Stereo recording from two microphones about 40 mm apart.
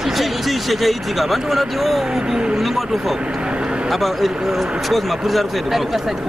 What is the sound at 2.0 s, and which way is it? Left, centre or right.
Speech, centre.